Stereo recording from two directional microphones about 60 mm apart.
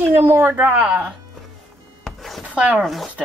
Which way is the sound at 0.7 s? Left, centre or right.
Right.